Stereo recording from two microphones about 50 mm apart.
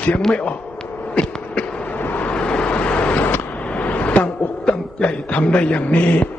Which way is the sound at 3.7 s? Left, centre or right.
Left.